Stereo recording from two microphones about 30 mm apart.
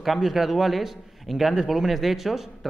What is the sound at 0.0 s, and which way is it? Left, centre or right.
A man's voice, centre.